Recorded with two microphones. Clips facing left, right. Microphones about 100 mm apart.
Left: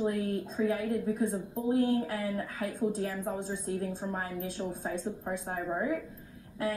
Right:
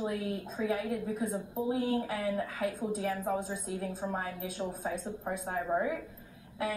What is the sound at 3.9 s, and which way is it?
A woman's voice, 10° right (ahead or behind).